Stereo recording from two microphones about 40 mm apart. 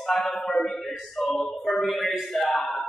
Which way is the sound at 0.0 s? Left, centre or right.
Centre.